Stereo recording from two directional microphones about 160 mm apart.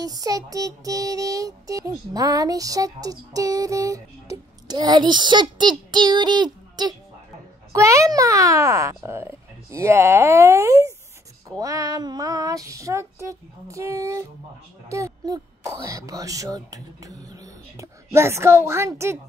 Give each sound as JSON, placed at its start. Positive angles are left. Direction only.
{"t": 0.0, "sound": "music", "side_deg": -20}